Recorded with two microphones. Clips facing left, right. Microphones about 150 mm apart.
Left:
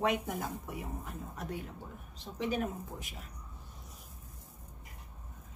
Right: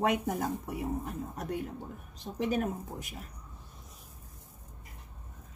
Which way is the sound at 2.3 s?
45° right (ahead or behind).